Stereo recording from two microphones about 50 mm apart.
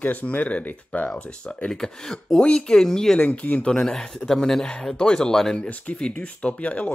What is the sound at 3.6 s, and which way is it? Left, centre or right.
Speech, centre.